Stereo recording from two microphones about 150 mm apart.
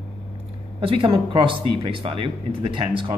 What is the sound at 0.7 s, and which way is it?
Speech, 35° right (ahead or behind).